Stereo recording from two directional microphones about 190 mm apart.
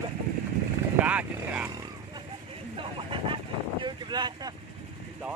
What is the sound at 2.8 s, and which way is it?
Vehicle, 25° right (ahead or behind).